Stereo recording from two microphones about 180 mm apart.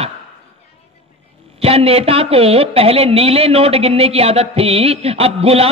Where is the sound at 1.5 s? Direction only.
35° right (ahead or behind).